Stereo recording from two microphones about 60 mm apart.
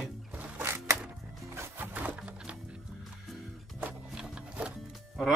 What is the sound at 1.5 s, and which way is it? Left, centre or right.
Music, right.